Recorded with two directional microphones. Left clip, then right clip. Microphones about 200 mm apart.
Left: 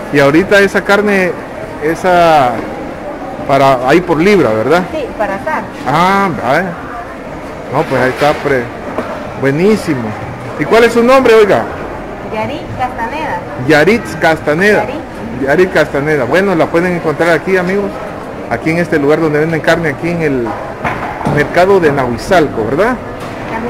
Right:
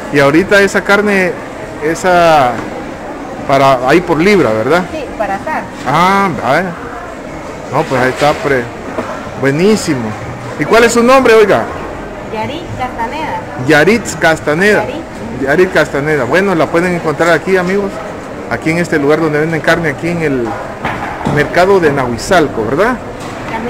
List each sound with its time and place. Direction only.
0.1 s a man's voice: centre (ahead or behind)
5.9 s a man's voice: centre (ahead or behind)
7.7 s a man's voice: 5° right (ahead or behind)
13.7 s a man's voice: 5° right (ahead or behind)
21.4 s a man's voice: centre (ahead or behind)